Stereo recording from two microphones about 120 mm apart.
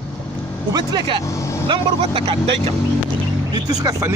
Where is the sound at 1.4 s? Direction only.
25° left (ahead or behind).